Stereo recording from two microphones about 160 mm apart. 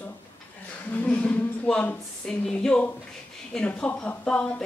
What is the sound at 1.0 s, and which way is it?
A woman's voice, 5° left (ahead or behind).